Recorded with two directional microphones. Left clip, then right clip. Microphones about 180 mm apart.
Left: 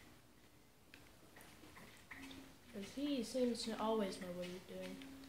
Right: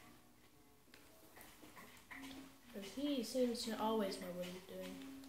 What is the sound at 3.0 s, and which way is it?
Speech, 40° left (ahead or behind).